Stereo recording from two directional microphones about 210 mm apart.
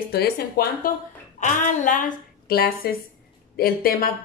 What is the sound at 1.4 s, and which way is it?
A woman's voice, 35° left (ahead or behind).